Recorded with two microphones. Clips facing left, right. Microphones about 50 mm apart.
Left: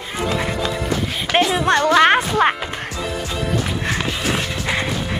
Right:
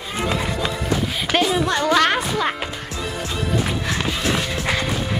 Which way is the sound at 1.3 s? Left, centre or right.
Left.